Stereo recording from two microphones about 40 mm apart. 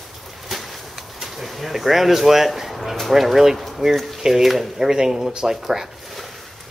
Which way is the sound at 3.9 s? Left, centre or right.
Centre.